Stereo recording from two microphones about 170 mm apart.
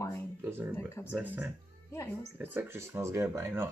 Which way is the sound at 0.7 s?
15° left (ahead or behind).